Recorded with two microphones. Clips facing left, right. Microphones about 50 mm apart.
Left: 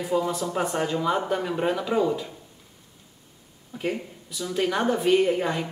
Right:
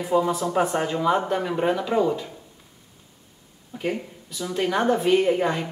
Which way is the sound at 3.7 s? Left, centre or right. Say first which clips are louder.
Right 1 dB; centre.